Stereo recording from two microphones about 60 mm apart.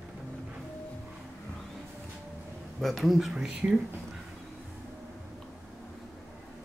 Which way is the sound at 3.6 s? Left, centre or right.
Right.